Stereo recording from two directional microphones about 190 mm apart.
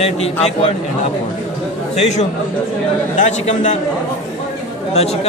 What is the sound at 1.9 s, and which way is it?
A man's voice, 35° left (ahead or behind).